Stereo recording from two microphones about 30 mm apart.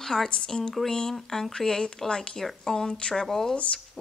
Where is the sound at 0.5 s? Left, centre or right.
Left.